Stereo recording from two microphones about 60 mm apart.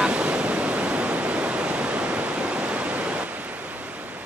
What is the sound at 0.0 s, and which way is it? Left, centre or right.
Waves, centre.